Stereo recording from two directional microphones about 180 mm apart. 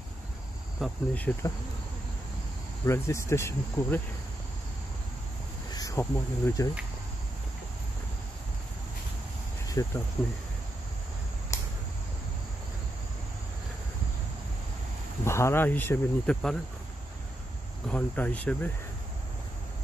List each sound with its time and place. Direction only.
0.8 s cricket: centre (ahead or behind)
1.1 s speech: 10° left (ahead or behind)
2.8 s speech: 15° left (ahead or behind)
5.7 s speech: 20° left (ahead or behind)
9.7 s cricket: 15° left (ahead or behind)
11.5 s cricket: 15° left (ahead or behind)
15.2 s speech: 15° left (ahead or behind)
17.8 s speech: 10° left (ahead or behind)